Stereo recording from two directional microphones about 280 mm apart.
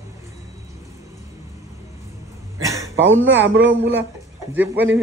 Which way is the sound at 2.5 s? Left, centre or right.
Centre.